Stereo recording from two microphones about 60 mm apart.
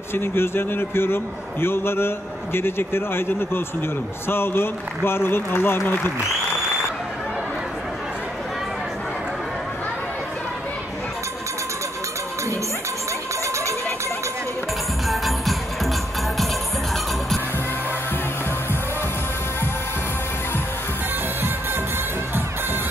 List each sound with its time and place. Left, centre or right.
0.1 s a man's voice: left
15.0 s music: centre